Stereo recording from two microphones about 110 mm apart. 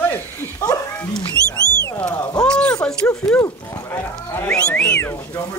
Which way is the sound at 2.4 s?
10° left (ahead or behind).